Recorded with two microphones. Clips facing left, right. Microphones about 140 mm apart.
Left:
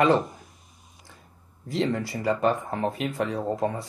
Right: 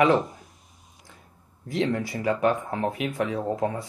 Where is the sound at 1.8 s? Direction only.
15° right (ahead or behind).